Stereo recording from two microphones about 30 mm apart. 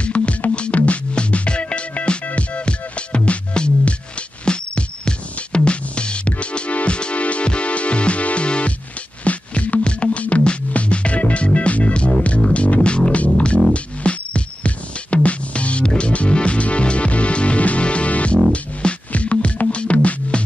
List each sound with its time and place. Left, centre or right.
0.0 s music: left
4.5 s music: left
9.2 s music: left
12.4 s music: left
16.1 s music: left
19.1 s music: left